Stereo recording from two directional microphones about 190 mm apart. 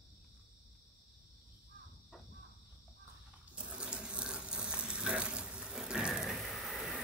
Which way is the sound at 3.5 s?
5° right (ahead or behind).